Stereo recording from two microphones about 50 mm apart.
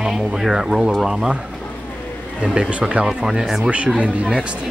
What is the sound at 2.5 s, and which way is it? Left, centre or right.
Speech, right.